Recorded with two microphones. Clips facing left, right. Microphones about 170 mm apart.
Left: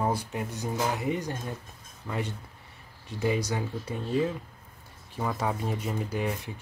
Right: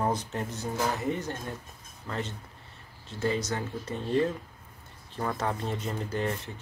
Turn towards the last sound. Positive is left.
turn(degrees=10)  # may be behind; listen again after turning